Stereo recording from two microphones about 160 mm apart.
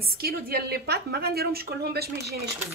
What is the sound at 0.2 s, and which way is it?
Speech, 75° right (ahead or behind).